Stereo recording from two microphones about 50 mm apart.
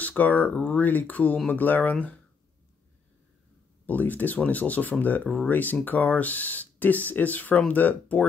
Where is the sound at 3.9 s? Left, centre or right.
Left.